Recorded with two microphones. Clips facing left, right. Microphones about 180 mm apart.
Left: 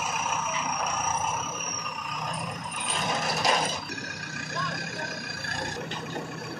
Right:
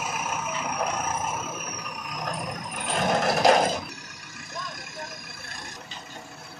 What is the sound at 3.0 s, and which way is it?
Sewing machine, 60° right (ahead or behind).